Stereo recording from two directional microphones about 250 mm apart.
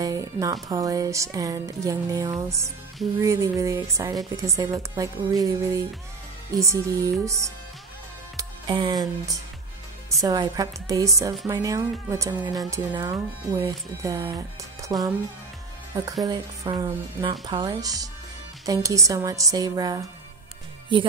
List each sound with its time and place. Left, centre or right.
0.0 s music: centre
0.7 s speech: centre